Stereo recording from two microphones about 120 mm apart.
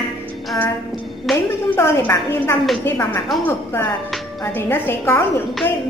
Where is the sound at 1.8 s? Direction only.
20° left (ahead or behind).